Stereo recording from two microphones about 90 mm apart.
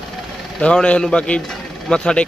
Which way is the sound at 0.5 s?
10° left (ahead or behind).